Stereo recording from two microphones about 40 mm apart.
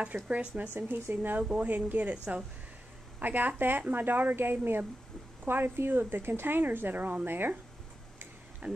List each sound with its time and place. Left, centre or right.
0.0 s speech: right
0.7 s a woman's voice: right
1.5 s speech: right
3.2 s speech: right
4.4 s a woman's voice: right
7.2 s a woman's voice: right
8.6 s speech: right